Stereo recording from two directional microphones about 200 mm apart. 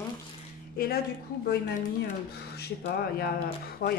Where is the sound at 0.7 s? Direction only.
50° left (ahead or behind).